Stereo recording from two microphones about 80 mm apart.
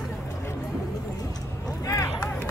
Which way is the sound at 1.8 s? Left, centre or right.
Left.